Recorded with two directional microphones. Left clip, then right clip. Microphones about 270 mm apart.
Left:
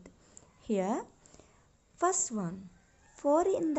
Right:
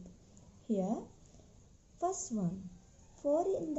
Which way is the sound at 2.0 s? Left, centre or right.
Left.